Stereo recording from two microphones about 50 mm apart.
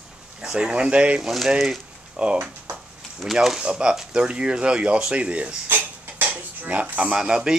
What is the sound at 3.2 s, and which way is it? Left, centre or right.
Speech, centre.